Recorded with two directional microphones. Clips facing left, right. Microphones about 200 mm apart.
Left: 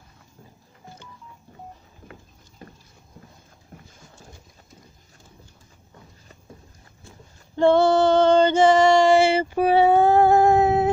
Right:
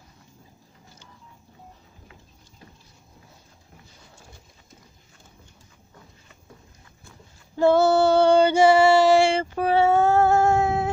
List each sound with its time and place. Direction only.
2.6 s dog: 55° left (ahead or behind)
7.5 s female singing: 5° right (ahead or behind); by 10.9 s 20° left (ahead or behind)